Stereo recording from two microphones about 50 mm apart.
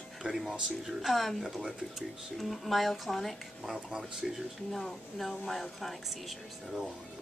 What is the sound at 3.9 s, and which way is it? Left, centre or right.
Speech, centre.